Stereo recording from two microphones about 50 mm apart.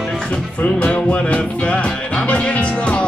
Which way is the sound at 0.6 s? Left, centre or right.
Left.